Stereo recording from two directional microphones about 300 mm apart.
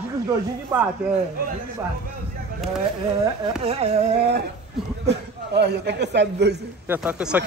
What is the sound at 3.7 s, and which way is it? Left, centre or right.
Music, centre.